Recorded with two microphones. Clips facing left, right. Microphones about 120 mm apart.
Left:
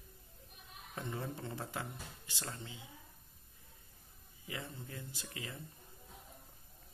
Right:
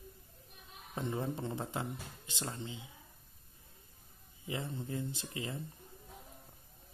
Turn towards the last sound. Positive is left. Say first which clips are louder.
# right 6 dB
turn(degrees=-25)  # may be behind; listen again after turning